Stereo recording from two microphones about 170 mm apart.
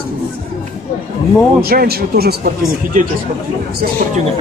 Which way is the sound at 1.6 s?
65° right (ahead or behind).